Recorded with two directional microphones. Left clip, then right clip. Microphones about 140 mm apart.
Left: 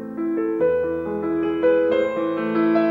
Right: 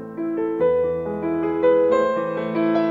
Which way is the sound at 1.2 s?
10° right (ahead or behind).